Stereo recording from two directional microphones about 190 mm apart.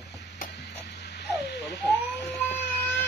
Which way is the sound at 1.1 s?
65° left (ahead or behind).